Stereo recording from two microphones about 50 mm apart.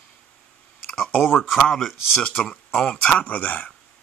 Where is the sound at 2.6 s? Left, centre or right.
Left.